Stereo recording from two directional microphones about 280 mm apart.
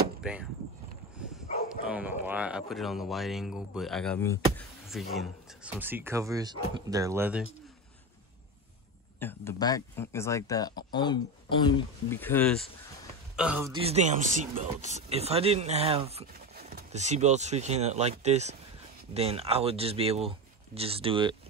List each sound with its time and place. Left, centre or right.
0.2 s speech: centre
1.9 s speech: centre
9.2 s speech: centre
13.4 s speech: centre
13.7 s speech: right